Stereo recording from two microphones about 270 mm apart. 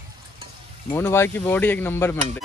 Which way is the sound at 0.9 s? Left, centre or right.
Centre.